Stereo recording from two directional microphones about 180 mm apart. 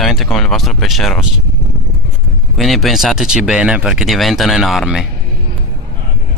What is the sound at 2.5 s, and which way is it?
Speech, centre (ahead or behind).